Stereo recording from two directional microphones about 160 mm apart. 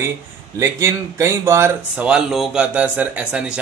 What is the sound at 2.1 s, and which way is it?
Speech, 5° right (ahead or behind).